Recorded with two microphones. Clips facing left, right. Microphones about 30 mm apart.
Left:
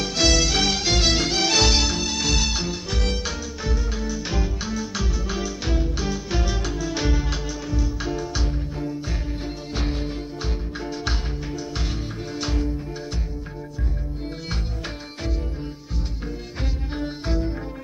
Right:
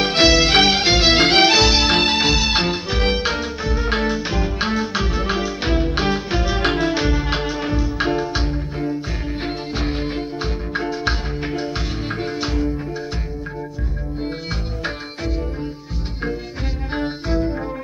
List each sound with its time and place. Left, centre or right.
0.0 s music: right
1.2 s music: right
1.5 s music: right
1.9 s music: right
2.9 s music: right
3.9 s music: right
6.3 s music: right
6.6 s music: right
6.9 s music: right
7.2 s music: right